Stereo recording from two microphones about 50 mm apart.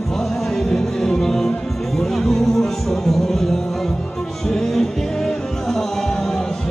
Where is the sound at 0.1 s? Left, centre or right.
Centre.